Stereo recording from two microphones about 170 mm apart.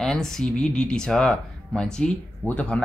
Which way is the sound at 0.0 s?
Centre (ahead or behind).